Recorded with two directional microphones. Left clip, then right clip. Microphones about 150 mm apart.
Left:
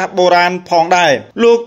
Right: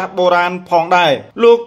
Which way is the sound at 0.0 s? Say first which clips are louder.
Left 3 dB; 40° left (ahead or behind).